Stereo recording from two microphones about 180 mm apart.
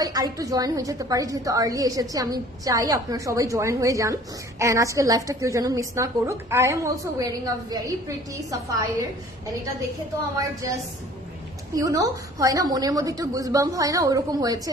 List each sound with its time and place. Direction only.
0.0 s a woman's voice: 20° right (ahead or behind)
11.7 s a woman's voice: 20° right (ahead or behind)